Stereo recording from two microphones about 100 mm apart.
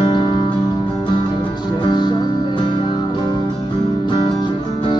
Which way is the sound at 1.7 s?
45° left (ahead or behind).